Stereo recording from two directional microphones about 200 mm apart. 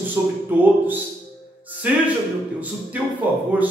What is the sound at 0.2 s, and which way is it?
Speech, 15° right (ahead or behind).